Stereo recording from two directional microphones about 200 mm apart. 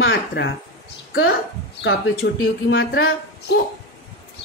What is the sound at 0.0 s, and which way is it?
Speech, 60° left (ahead or behind).